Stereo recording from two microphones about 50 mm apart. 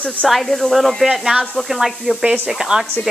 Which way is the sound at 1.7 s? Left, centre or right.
Centre.